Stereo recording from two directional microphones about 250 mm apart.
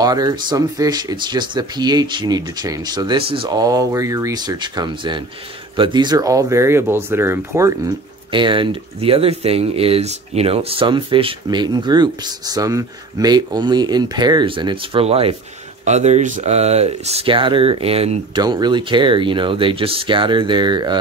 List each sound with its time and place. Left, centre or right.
0.0 s speech: centre